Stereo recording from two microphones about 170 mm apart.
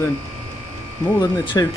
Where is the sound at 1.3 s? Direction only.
25° left (ahead or behind).